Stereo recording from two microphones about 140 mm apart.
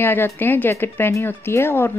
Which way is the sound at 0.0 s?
15° left (ahead or behind).